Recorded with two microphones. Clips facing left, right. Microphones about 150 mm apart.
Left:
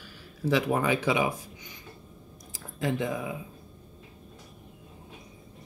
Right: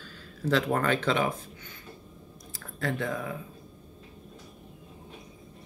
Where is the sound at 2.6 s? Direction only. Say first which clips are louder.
Left 2 dB; 15° left (ahead or behind).